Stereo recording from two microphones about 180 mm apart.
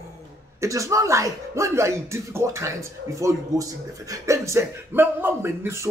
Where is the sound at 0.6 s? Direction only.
15° right (ahead or behind).